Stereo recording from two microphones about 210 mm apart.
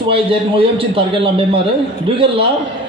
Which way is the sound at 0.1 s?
25° right (ahead or behind).